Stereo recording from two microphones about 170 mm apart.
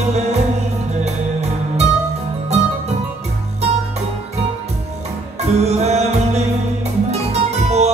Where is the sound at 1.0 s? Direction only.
40° right (ahead or behind).